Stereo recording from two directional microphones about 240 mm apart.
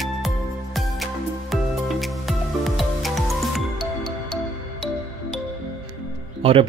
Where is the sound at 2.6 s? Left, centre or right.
Centre.